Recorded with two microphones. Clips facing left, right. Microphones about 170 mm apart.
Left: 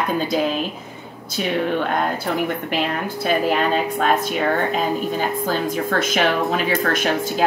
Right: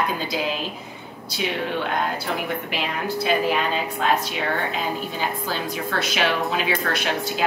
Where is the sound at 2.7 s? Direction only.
50° left (ahead or behind).